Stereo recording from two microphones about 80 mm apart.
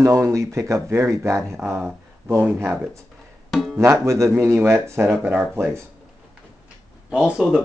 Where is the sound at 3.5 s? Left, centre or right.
Centre.